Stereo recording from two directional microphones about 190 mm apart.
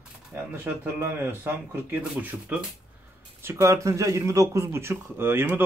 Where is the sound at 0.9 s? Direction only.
10° right (ahead or behind).